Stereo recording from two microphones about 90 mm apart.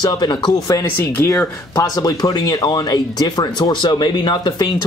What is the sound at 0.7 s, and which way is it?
Speech, 35° left (ahead or behind).